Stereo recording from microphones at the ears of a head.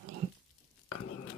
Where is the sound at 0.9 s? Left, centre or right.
Left.